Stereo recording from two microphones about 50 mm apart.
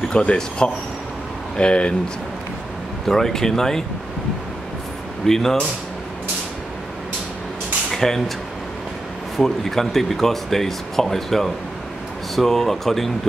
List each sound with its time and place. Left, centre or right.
0.1 s speech: centre
3.1 s speech: centre
5.2 s speech: centre
7.9 s a sound: centre
9.4 s speech: centre